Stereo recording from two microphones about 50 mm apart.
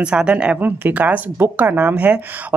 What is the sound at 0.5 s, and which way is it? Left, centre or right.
Speech, right.